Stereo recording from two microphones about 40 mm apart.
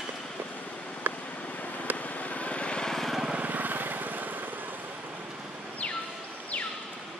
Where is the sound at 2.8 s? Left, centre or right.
Centre.